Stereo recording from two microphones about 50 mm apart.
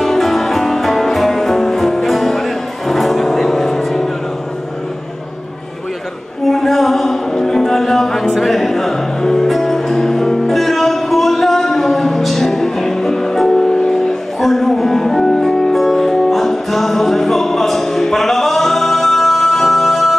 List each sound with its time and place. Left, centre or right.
0.0 s music: centre
6.4 s music: centre